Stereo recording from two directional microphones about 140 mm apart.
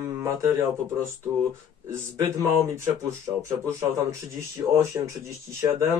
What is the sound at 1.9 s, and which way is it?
Speech, 20° right (ahead or behind).